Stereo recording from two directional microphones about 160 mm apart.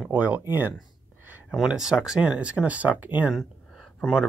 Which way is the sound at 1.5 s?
Centre (ahead or behind).